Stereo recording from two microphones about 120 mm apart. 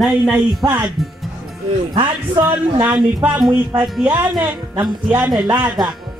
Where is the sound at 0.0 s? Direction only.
Centre (ahead or behind).